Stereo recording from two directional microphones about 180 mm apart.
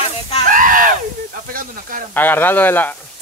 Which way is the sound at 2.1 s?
10° left (ahead or behind).